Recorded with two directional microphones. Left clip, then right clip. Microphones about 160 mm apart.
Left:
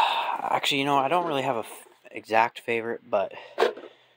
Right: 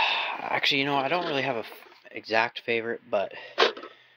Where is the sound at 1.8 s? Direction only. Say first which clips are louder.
Right 1 dB; 5° left (ahead or behind).